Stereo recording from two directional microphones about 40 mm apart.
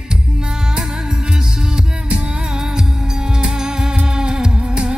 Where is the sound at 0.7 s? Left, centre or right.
Centre.